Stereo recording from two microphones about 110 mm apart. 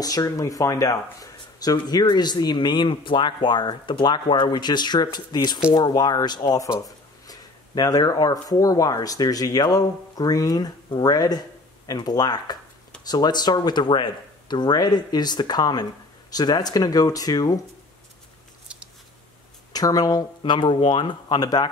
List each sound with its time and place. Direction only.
0.0 s speech: 35° left (ahead or behind)
19.7 s speech: 35° left (ahead or behind)
20.5 s speech: 45° left (ahead or behind)